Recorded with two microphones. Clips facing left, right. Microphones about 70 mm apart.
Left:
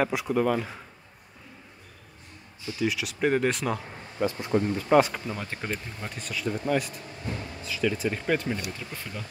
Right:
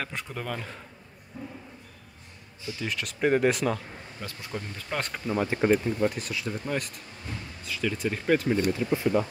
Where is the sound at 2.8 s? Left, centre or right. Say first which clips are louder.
Left 2 dB; centre.